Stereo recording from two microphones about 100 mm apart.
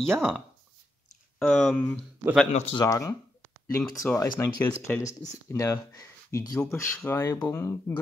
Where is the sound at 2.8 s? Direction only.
35° left (ahead or behind).